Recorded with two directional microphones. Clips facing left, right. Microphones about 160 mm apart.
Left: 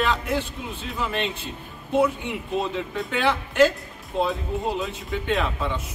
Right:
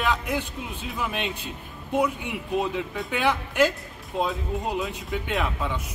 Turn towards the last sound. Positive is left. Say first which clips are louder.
# left 2 dB
turn(degrees=-10)  # may be behind; listen again after turning